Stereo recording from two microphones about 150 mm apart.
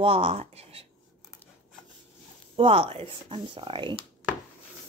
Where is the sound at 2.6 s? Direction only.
40° right (ahead or behind).